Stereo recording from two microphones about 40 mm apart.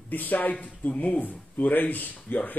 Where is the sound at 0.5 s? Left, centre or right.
Left.